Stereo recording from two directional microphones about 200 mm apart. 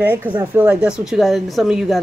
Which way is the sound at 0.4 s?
10° right (ahead or behind).